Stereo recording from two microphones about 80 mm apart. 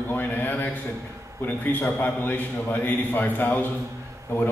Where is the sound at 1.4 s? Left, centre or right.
Left.